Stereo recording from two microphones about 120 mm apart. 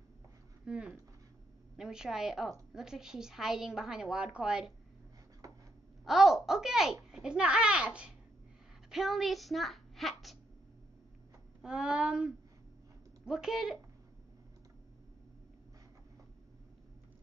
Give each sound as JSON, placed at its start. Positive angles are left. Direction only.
{"t": 0.7, "sound": "a woman's voice", "side_deg": -5}
{"t": 5.4, "sound": "writing", "side_deg": -30}
{"t": 6.0, "sound": "a woman's voice", "side_deg": -5}
{"t": 11.6, "sound": "a woman's voice", "side_deg": -5}